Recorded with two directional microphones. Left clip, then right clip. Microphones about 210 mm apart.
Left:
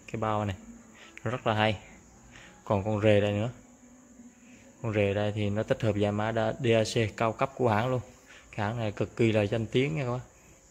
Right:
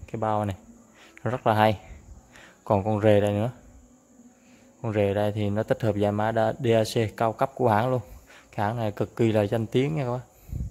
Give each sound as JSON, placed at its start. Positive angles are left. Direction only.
{"t": 0.0, "sound": "speech", "side_deg": -15}
{"t": 4.8, "sound": "speech", "side_deg": -15}